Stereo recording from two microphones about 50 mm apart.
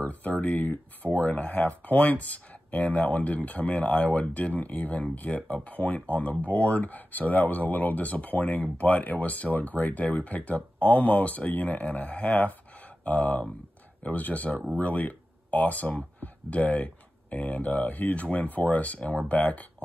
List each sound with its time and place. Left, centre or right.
0.0 s speech: left